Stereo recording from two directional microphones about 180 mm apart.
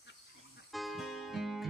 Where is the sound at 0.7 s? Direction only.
Centre (ahead or behind).